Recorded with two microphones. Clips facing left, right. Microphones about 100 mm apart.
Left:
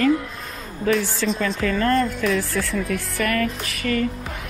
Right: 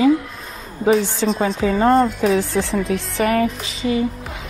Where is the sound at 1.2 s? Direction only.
35° right (ahead or behind).